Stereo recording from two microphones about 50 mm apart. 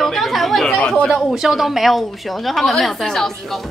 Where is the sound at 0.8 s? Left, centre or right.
Left.